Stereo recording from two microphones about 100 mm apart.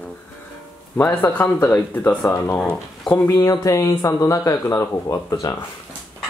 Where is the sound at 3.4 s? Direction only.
35° left (ahead or behind).